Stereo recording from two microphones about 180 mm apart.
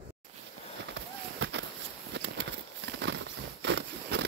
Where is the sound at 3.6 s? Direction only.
75° right (ahead or behind).